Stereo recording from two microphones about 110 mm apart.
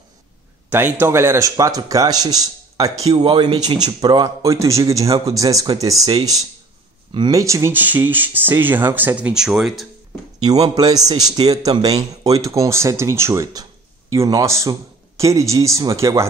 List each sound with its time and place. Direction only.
0.7 s a man's voice: 20° right (ahead or behind)
7.2 s speech: 30° right (ahead or behind)
7.7 s speech: 15° right (ahead or behind)
10.7 s a man's voice: 35° right (ahead or behind)